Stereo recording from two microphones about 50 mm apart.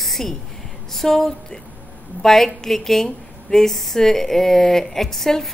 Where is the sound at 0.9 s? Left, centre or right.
Centre.